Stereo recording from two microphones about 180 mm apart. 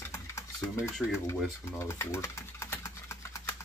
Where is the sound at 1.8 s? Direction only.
15° left (ahead or behind).